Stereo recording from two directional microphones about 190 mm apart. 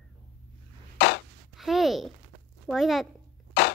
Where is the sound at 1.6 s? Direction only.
Centre (ahead or behind).